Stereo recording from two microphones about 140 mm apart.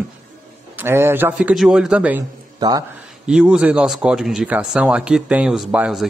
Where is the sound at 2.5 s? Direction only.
30° right (ahead or behind).